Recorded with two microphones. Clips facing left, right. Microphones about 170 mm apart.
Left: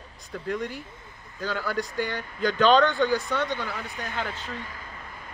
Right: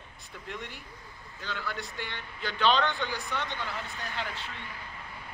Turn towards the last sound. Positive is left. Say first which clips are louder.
# left 5 dB
turn(degrees=40)  # may be behind; listen again after turning